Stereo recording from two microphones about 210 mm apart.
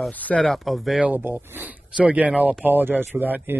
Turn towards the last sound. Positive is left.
turn(degrees=-10)  # may be behind; listen again after turning